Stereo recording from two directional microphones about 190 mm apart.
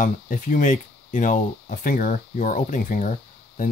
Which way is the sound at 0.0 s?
45° left (ahead or behind).